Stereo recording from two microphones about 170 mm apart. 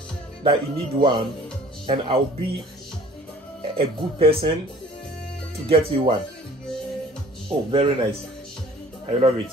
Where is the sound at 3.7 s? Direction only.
35° right (ahead or behind).